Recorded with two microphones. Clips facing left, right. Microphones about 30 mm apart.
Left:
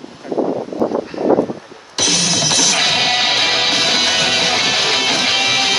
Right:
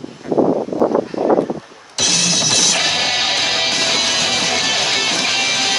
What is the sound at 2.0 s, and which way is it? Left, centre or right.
Music, centre.